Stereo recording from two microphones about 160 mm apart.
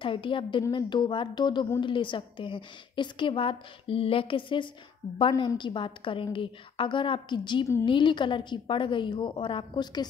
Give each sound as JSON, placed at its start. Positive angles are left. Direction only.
{"t": 0.0, "sound": "a woman's voice", "side_deg": 30}